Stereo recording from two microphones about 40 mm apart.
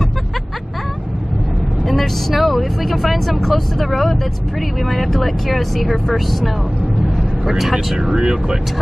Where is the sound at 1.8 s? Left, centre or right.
Centre.